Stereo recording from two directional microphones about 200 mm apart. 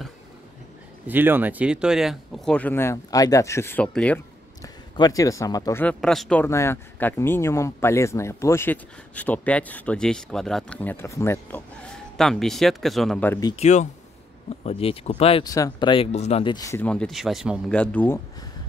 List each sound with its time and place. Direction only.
1.0 s speech: 10° right (ahead or behind); by 4.2 s 5° left (ahead or behind)
4.6 s speech: 20° left (ahead or behind); by 6.4 s centre (ahead or behind)
6.4 s speech: 15° left (ahead or behind)
13.6 s speech: 35° left (ahead or behind)
15.4 s speech: 15° left (ahead or behind)
16.5 s speech: 15° left (ahead or behind)